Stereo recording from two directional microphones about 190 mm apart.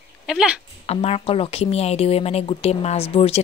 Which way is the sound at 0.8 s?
30° left (ahead or behind).